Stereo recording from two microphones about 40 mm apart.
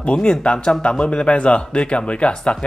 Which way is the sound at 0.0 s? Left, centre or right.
Left.